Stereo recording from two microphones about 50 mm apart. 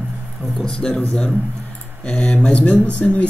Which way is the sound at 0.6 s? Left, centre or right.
Centre.